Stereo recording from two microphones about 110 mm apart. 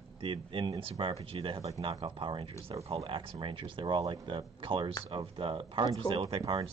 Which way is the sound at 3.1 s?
50° right (ahead or behind).